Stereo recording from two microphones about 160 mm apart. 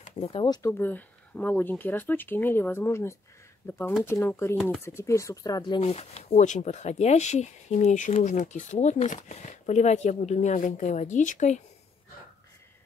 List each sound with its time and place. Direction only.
0.2 s speech: 35° left (ahead or behind)
0.6 s speech: 15° left (ahead or behind)
5.9 s speech: 40° left (ahead or behind)